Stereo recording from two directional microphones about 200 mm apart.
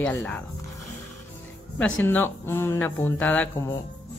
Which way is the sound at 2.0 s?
10° left (ahead or behind).